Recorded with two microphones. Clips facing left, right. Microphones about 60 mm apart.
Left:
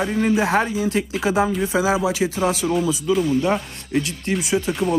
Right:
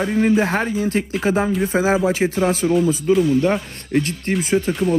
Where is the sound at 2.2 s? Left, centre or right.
Right.